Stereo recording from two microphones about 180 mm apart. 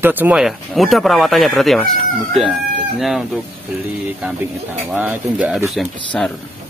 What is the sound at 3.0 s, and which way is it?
Speech, centre (ahead or behind).